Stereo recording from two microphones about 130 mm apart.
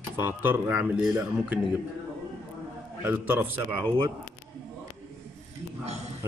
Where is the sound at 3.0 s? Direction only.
15° right (ahead or behind).